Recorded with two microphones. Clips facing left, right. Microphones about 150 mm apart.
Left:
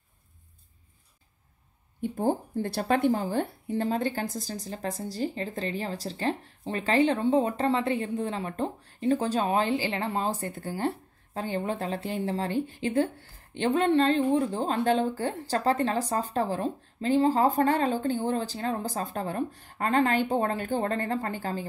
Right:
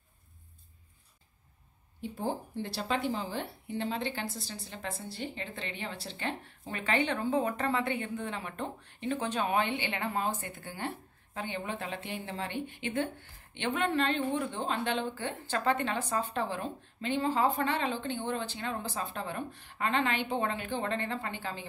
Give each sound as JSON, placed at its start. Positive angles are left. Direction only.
{"t": 2.0, "sound": "a woman's voice", "side_deg": 45}